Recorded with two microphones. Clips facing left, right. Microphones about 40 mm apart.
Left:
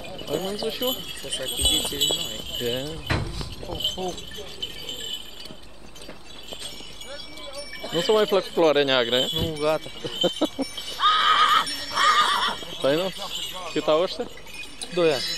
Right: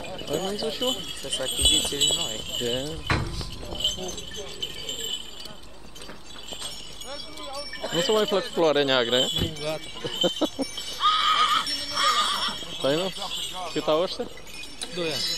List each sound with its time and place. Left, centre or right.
0.2 s speech: centre
1.5 s speech: centre
7.8 s speech: centre
11.0 s neigh: left
11.6 s horse: centre
12.0 s neigh: left
12.5 s a sound: centre
13.6 s speech: centre